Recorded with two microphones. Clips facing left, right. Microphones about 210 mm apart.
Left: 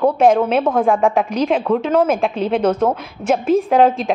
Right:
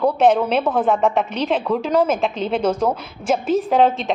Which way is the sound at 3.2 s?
40° left (ahead or behind).